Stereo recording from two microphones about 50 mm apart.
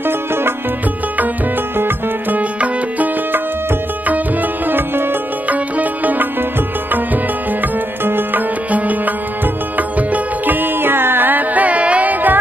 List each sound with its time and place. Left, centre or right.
0.0 s music: right
1.8 s music: right
4.1 s tabla: right
5.5 s sitar: right
8.0 s sitar: right
9.8 s music: right